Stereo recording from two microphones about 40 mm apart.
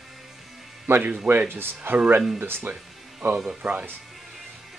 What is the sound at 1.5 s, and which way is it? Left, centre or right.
Speech, right.